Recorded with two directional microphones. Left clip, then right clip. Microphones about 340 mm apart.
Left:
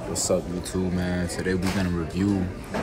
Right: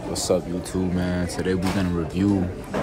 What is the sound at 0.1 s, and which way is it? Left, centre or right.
Speech, centre.